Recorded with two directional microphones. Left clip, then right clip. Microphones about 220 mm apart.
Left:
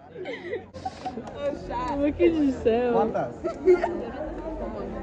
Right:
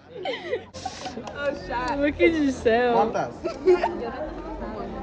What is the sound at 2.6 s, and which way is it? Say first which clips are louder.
Speech: right 4 dB; 5° left (ahead or behind).